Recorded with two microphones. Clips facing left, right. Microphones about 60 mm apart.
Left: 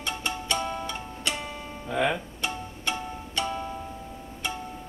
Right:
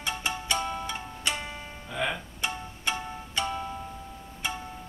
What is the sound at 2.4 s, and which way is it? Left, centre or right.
Music, centre.